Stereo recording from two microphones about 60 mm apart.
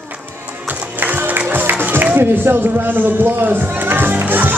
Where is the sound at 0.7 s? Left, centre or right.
Right.